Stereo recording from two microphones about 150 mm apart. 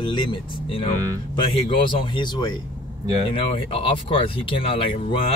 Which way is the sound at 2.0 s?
30° left (ahead or behind).